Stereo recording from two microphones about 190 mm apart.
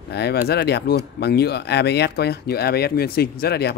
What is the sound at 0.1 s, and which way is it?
Speech, 60° left (ahead or behind).